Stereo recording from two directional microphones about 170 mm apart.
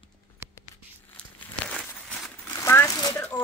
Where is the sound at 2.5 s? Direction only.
15° left (ahead or behind).